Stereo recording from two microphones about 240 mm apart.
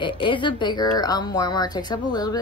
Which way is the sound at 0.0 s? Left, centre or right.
Centre.